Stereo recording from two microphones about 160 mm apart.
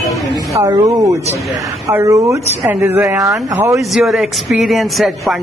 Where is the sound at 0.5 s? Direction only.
20° right (ahead or behind).